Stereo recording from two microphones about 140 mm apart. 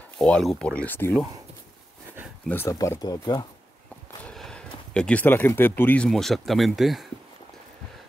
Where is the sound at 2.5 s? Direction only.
20° left (ahead or behind).